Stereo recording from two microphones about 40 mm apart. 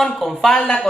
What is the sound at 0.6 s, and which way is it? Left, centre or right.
Speech, left.